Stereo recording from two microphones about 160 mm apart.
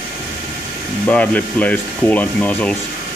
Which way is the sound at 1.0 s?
10° left (ahead or behind).